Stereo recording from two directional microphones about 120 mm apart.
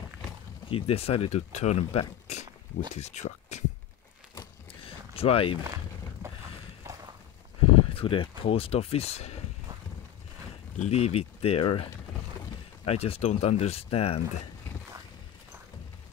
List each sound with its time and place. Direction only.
0.7 s speech: 55° left (ahead or behind); by 3.6 s 75° left (ahead or behind)
4.8 s a sound: 55° left (ahead or behind)
6.2 s boat: 20° right (ahead or behind)
6.8 s a sound: 30° right (ahead or behind)
7.7 s speech: 50° left (ahead or behind)
10.9 s speech: 60° left (ahead or behind)
12.8 s speech: 55° left (ahead or behind)